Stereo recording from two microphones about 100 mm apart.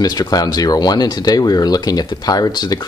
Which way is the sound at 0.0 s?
40° left (ahead or behind).